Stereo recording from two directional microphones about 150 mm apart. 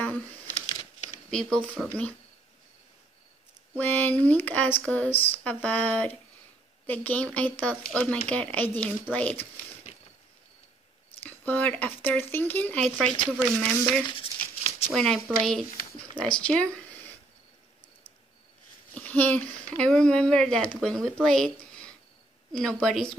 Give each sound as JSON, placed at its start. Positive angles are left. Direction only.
{"t": 0.0, "sound": "a sound", "side_deg": 10}
{"t": 1.8, "sound": "speech", "side_deg": 10}
{"t": 3.7, "sound": "speech", "side_deg": 10}
{"t": 11.2, "sound": "speech", "side_deg": 10}
{"t": 14.0, "sound": "a sound", "side_deg": 35}
{"t": 14.9, "sound": "speech", "side_deg": 0}
{"t": 18.9, "sound": "speech", "side_deg": 10}